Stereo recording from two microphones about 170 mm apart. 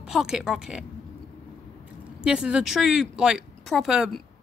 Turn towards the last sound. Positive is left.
turn(degrees=0)  # may be behind; listen again after turning